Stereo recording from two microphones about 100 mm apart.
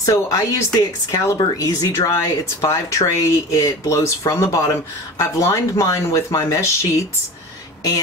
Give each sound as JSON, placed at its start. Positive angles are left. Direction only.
{"t": 0.0, "sound": "speech", "side_deg": 35}